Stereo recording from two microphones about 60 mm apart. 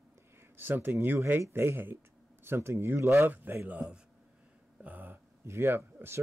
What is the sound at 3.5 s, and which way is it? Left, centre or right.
Speech, right.